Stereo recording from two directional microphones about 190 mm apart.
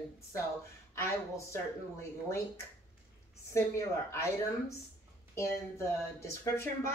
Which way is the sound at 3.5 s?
15° left (ahead or behind).